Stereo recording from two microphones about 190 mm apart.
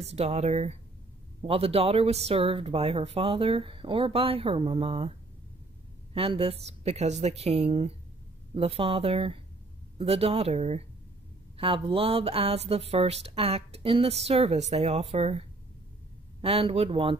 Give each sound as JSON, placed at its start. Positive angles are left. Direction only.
{"t": 0.0, "sound": "speech", "side_deg": -35}
{"t": 6.1, "sound": "speech", "side_deg": -30}